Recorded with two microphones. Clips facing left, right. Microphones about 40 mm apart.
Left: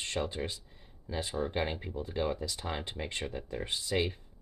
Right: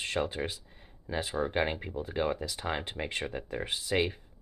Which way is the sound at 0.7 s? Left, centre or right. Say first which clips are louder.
Right 3 dB; right.